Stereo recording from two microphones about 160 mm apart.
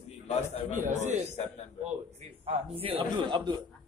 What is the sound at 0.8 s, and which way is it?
Speech, 50° right (ahead or behind).